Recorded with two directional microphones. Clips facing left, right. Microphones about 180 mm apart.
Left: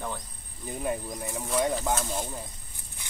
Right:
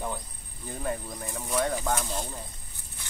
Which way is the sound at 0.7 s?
15° left (ahead or behind).